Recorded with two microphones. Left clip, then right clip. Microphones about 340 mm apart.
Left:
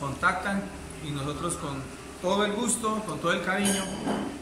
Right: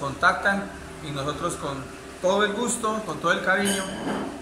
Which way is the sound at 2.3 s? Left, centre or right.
Centre.